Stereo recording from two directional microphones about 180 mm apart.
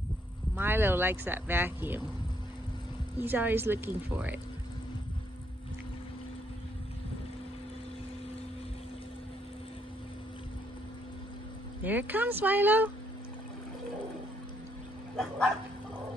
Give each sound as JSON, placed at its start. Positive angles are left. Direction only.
{"t": 0.6, "sound": "speech", "side_deg": -10}
{"t": 3.2, "sound": "speech", "side_deg": -10}
{"t": 11.8, "sound": "speech", "side_deg": -10}
{"t": 15.1, "sound": "speech", "side_deg": 0}